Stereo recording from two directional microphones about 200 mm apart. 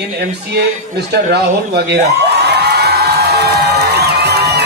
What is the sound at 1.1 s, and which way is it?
Speech, 55° right (ahead or behind).